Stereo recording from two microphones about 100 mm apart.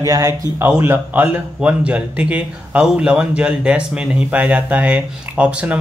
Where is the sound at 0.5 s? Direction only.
20° right (ahead or behind).